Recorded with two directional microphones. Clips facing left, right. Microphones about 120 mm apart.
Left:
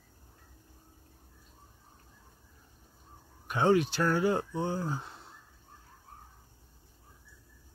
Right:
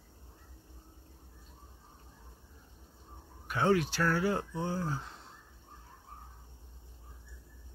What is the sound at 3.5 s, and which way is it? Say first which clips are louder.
Speech: left 3 dB; 20° left (ahead or behind).